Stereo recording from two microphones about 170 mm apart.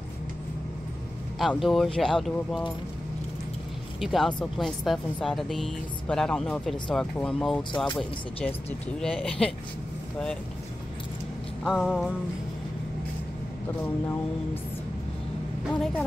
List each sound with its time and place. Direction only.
1.4 s speech: centre (ahead or behind)
4.0 s speech: centre (ahead or behind)
11.6 s speech: centre (ahead or behind)
14.0 s speech: 15° left (ahead or behind)
15.7 s speech: 5° left (ahead or behind)